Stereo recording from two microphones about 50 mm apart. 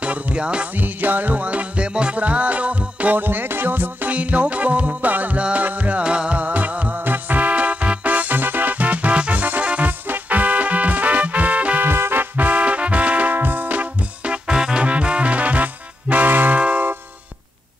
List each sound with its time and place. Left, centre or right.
0.0 s music: right
0.7 s music: right
3.2 s music: right
4.1 s music: right
11.8 s music: right
13.3 s music: right
16.5 s a sound: right